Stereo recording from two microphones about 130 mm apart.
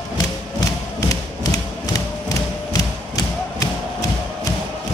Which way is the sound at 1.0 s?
25° left (ahead or behind).